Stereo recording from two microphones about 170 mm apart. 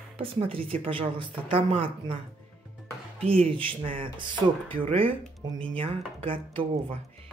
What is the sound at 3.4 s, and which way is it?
Speech, 35° right (ahead or behind).